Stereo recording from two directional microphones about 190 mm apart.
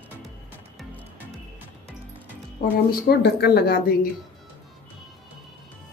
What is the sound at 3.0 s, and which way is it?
Speech, 55° left (ahead or behind).